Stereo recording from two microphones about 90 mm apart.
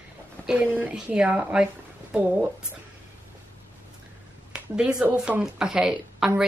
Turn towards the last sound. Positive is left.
turn(degrees=-5)  # may be behind; listen again after turning